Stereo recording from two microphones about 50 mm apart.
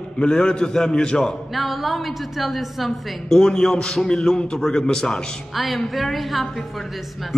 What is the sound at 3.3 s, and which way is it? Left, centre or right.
A man's voice, centre.